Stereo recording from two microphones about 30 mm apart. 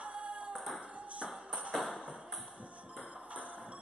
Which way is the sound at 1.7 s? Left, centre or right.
Centre.